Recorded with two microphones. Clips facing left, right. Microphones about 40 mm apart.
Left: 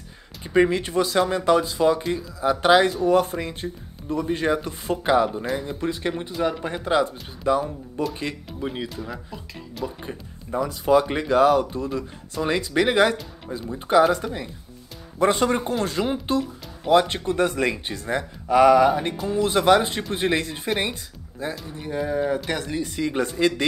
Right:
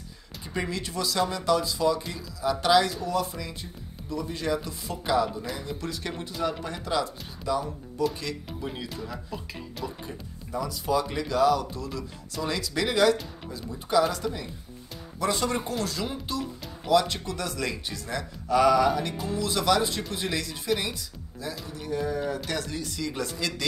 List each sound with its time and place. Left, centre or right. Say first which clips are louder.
0.5 s speech: left 12 dB; left
10.0 s speech: left 4 dB; left